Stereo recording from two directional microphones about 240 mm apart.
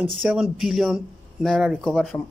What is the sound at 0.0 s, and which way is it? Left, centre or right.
Speech, centre.